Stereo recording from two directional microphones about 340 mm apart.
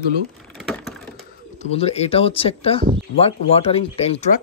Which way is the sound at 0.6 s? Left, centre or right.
Centre.